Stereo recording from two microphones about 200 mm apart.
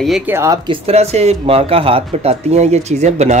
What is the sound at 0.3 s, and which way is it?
Speech, 15° right (ahead or behind).